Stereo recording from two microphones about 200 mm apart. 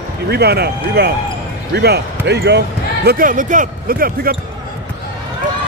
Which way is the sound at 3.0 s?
45° right (ahead or behind).